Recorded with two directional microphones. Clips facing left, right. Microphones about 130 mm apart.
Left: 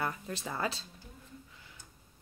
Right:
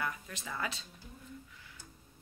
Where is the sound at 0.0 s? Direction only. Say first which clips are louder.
Left 3 dB; 35° left (ahead or behind).